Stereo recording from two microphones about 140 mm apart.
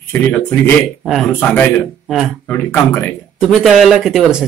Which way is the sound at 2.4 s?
15° left (ahead or behind).